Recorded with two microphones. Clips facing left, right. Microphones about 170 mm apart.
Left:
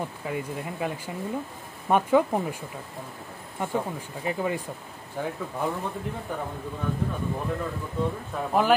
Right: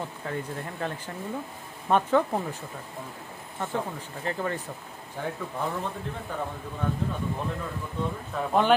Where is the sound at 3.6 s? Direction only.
10° left (ahead or behind).